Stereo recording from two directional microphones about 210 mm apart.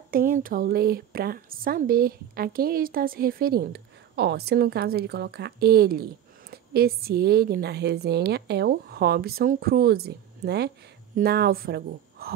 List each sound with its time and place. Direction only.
0.1 s speech: 45° right (ahead or behind)